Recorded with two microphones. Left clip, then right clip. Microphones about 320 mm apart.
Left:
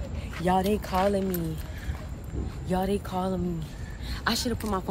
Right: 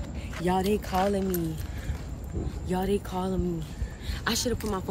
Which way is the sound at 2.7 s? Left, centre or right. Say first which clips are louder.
Left 1 dB; centre.